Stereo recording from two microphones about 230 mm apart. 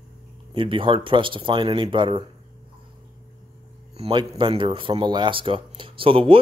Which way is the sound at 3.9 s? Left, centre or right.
Right.